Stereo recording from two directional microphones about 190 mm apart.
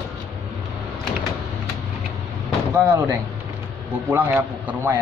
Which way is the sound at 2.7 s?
10° right (ahead or behind).